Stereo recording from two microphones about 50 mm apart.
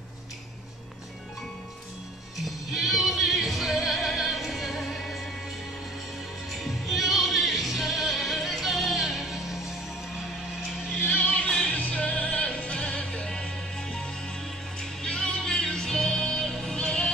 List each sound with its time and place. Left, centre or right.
2.4 s music: centre
6.5 s music: centre
11.1 s music: left
11.4 s music: centre